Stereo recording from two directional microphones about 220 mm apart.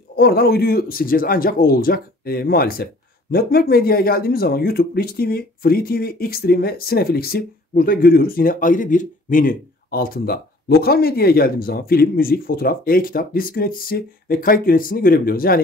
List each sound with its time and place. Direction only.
0.1 s speech: 45° left (ahead or behind)